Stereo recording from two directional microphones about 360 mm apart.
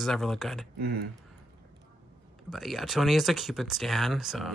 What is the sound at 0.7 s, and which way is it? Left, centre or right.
Speech, right.